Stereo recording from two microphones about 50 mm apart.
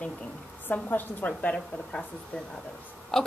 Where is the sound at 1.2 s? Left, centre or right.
Left.